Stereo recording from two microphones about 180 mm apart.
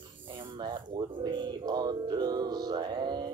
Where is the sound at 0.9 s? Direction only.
25° right (ahead or behind).